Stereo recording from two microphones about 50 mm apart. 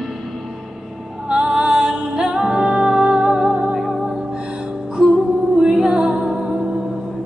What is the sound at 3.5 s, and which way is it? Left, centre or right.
Music, right.